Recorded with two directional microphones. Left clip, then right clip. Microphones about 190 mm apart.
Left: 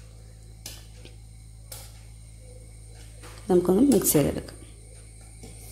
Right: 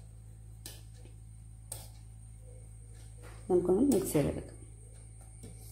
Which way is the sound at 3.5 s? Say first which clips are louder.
Left 7 dB; 15° left (ahead or behind).